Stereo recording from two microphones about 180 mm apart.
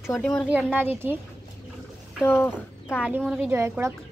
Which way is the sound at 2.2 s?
15° left (ahead or behind).